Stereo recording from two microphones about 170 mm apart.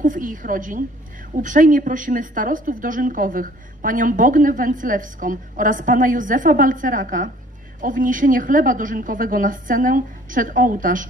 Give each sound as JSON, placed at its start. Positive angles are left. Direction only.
{"t": 0.0, "sound": "a woman's voice", "side_deg": -50}